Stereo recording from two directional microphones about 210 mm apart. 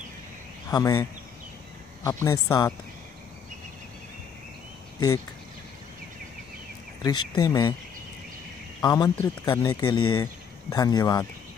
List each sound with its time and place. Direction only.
0.7 s a woman's voice: 15° left (ahead or behind)
2.0 s a woman's voice: 15° left (ahead or behind)
7.0 s speech: 20° left (ahead or behind)
8.8 s speech: 20° left (ahead or behind)
9.1 s a woman's voice: 10° left (ahead or behind)